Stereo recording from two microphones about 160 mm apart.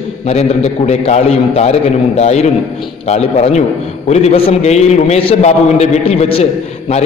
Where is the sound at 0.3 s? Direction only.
45° left (ahead or behind).